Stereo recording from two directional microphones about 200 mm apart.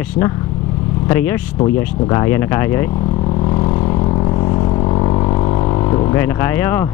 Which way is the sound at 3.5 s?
25° left (ahead or behind).